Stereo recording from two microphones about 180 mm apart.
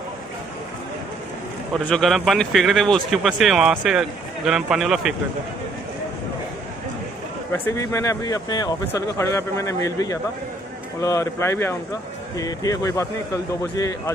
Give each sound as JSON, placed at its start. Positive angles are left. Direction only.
{"t": 1.7, "sound": "speech", "side_deg": 0}
{"t": 7.5, "sound": "a man's voice", "side_deg": 15}